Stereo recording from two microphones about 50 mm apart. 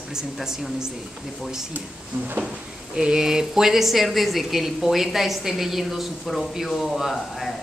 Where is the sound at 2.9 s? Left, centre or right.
Centre.